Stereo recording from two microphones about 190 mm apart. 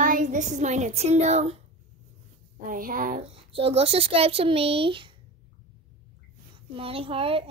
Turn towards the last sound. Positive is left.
turn(degrees=-30)  # may be behind; listen again after turning